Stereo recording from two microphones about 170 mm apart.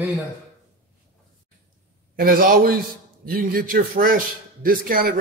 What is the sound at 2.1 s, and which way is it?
Speech, 60° right (ahead or behind).